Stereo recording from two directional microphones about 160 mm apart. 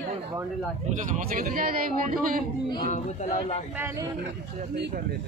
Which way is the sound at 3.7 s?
20° right (ahead or behind).